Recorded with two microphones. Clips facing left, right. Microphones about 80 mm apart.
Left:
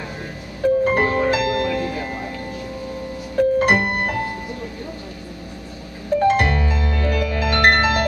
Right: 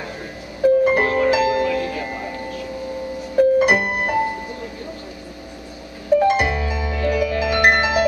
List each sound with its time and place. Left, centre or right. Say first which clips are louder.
0.6 s music: right 2 dB; centre
3.3 s music: right 2 dB; centre
6.1 s music: right 1 dB; centre